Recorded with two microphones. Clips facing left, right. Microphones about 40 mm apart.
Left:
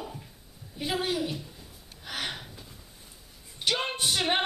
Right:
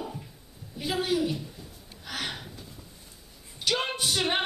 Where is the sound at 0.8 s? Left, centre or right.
Centre.